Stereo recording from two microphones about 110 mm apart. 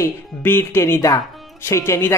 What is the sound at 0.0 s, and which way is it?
Speech, 20° left (ahead or behind).